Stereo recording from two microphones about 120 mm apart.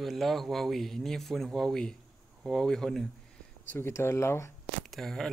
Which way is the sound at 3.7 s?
20° left (ahead or behind).